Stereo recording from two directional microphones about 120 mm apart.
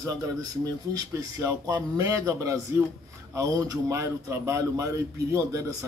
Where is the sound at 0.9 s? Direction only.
30° right (ahead or behind).